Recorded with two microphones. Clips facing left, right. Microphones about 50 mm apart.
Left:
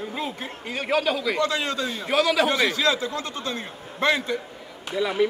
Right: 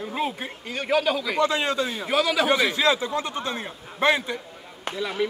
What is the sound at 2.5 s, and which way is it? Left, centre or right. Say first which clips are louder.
A man's voice: right 1 dB; centre.